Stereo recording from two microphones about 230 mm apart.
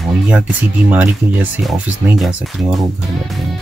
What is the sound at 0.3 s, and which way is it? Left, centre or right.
Speech, centre.